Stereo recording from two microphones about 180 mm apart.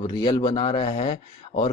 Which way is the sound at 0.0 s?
25° left (ahead or behind).